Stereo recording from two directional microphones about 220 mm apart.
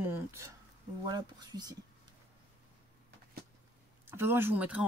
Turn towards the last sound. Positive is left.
turn(degrees=-5)  # may be behind; listen again after turning